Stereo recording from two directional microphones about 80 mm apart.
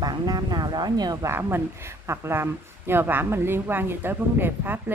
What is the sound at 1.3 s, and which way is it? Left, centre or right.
Speech, right.